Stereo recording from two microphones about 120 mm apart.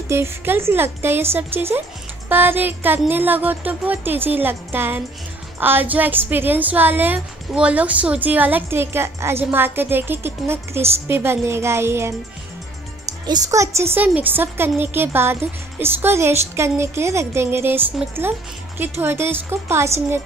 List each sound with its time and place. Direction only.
0.1 s a woman's voice: 20° right (ahead or behind)
13.3 s speech: 30° right (ahead or behind)